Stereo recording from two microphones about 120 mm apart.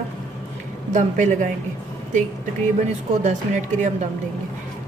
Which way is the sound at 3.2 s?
80° right.